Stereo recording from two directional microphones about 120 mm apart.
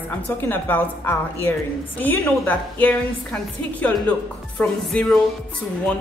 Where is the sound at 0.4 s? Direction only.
15° left (ahead or behind).